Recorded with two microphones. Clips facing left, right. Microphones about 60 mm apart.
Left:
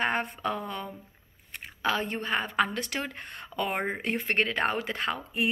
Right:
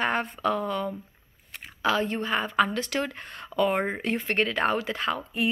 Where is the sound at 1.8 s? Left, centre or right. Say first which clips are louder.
Right 4 dB; left.